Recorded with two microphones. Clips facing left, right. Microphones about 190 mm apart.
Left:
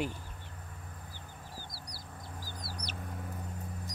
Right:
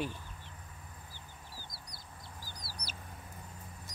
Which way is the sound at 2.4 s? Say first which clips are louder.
Left 5 dB; 50° left (ahead or behind).